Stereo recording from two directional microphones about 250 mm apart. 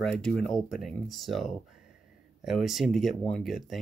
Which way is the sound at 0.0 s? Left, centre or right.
Centre.